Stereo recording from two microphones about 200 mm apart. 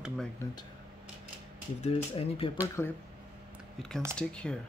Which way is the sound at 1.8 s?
30° left (ahead or behind).